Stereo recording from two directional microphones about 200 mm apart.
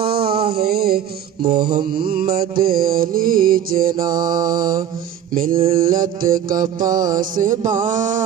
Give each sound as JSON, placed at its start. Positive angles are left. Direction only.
{"t": 0.0, "sound": "a sound", "side_deg": -50}
{"t": 0.6, "sound": "music", "side_deg": -50}
{"t": 1.7, "sound": "mantra", "side_deg": -45}
{"t": 4.2, "sound": "mantra", "side_deg": -20}
{"t": 4.5, "sound": "mantra", "side_deg": -40}
{"t": 5.5, "sound": "mantra", "side_deg": -30}
{"t": 5.8, "sound": "music", "side_deg": -45}